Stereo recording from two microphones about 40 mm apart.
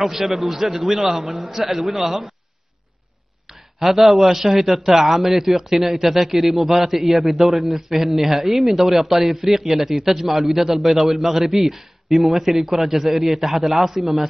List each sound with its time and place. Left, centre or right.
0.3 s a man's voice: centre
3.4 s a man's voice: centre